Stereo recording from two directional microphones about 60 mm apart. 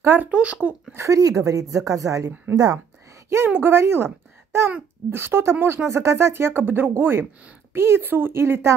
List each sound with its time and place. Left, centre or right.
0.0 s a child's voice: right
0.3 s a child's voice: right
0.9 s a woman's voice: right
2.5 s speech: right
3.4 s speech: right